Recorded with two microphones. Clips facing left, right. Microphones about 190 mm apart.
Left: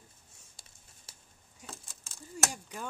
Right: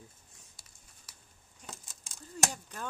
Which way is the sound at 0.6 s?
30° left (ahead or behind).